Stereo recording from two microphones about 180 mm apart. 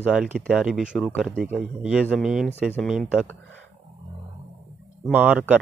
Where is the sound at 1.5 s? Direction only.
5° right (ahead or behind).